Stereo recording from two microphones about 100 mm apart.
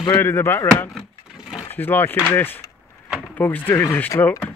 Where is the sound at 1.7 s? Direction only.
20° left (ahead or behind).